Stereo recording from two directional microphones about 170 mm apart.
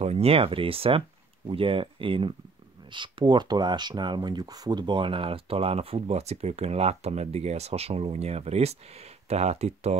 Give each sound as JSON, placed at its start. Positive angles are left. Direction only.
{"t": 0.0, "sound": "speech", "side_deg": -35}